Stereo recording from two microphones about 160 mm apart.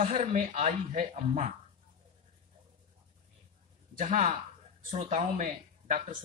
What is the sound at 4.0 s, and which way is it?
Speech, 45° right (ahead or behind).